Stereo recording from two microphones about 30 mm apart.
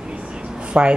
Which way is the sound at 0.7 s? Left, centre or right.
Right.